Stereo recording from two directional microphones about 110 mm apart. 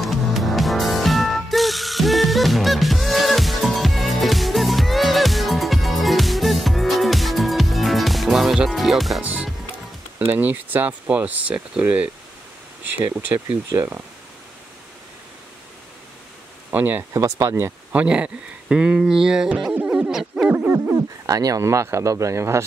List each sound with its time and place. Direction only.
0.0 s music: centre (ahead or behind)
9.2 s music: 10° right (ahead or behind)
10.3 s speech: 15° right (ahead or behind)
16.7 s speech: 15° right (ahead or behind)
17.1 s speech: 30° right (ahead or behind)
17.9 s speech: 10° right (ahead or behind)
20.5 s speech: 15° right (ahead or behind)
21.3 s speech: 35° right (ahead or behind)